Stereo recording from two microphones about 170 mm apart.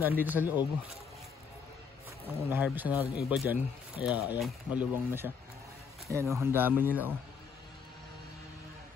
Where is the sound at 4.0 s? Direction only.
25° left (ahead or behind).